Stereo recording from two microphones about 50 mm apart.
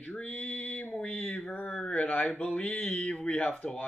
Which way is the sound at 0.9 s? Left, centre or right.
Left.